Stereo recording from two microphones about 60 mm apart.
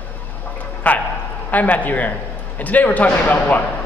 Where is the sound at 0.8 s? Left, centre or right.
Left.